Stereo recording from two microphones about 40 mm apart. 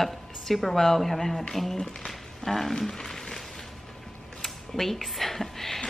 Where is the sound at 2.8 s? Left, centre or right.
Centre.